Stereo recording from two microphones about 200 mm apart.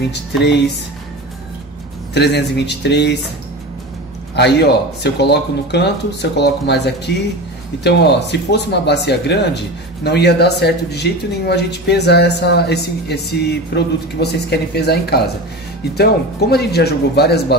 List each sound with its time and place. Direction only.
2.1 s speech: 55° left (ahead or behind)
4.4 s speech: 55° left (ahead or behind)